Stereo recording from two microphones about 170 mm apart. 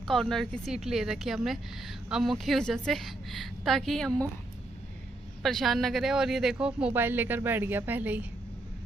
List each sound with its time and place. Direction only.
0.0 s a woman's voice: centre (ahead or behind)
5.4 s speech: centre (ahead or behind)